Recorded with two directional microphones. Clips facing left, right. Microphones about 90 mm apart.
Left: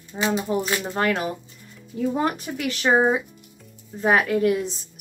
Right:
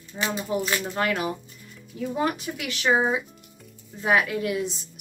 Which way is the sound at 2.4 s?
40° left (ahead or behind).